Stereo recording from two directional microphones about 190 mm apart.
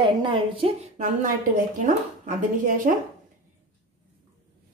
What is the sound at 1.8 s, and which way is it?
A woman's voice, 45° right (ahead or behind).